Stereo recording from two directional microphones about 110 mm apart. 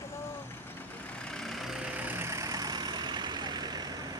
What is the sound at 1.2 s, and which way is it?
Vehicle, 5° left (ahead or behind).